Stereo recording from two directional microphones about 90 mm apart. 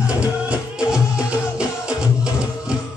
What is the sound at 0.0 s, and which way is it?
Music, 10° right (ahead or behind).